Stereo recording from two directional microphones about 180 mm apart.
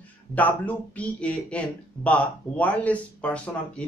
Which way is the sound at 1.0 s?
5° left (ahead or behind).